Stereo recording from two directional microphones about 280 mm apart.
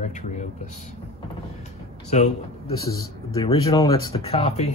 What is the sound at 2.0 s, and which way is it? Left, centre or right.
Speech, left.